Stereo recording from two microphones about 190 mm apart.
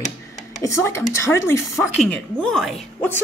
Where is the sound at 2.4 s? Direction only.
Centre (ahead or behind).